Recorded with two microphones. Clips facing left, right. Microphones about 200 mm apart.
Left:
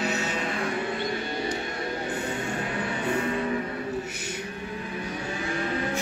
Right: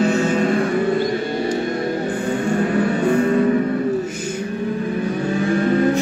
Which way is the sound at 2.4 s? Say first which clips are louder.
Right 12 dB; 45° right (ahead or behind).